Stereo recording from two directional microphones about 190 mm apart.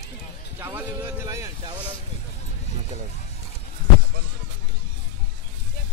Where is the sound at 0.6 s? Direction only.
10° right (ahead or behind).